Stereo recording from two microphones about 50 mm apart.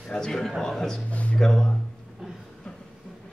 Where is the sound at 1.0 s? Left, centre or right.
Left.